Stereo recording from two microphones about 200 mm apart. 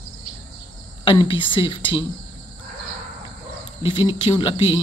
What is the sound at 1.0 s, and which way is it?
Speech, 25° left (ahead or behind).